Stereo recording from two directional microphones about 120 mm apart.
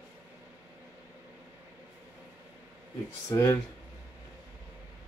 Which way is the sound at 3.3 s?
25° left (ahead or behind).